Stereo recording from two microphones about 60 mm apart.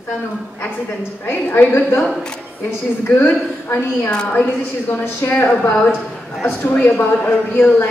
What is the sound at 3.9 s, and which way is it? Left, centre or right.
Speech, centre.